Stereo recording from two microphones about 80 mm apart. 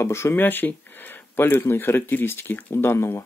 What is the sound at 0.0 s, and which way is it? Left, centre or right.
Speech, left.